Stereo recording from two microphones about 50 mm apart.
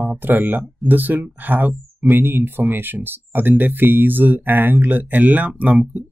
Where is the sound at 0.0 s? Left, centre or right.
Right.